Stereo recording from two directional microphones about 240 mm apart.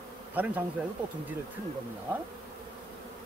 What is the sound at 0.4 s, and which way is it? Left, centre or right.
Speech, centre.